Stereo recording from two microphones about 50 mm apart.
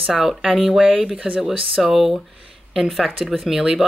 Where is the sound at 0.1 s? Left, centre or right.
Centre.